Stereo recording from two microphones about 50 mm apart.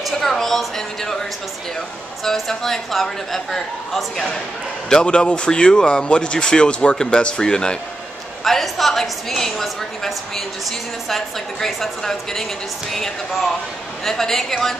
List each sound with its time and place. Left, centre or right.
0.0 s a woman's voice: centre
2.2 s a woman's voice: centre
8.5 s a woman's voice: centre